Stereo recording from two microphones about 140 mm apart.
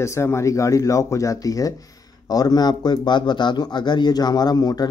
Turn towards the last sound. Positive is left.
turn(degrees=30)  # may be behind; listen again after turning